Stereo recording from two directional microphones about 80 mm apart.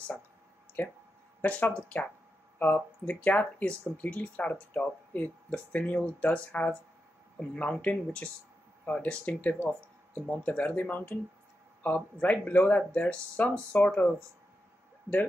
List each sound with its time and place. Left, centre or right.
1.4 s speech: centre